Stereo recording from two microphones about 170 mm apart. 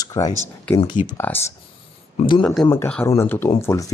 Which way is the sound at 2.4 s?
Centre (ahead or behind).